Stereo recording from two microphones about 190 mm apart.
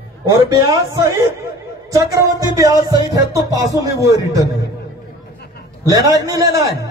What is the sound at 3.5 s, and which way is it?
Speech, 15° right (ahead or behind).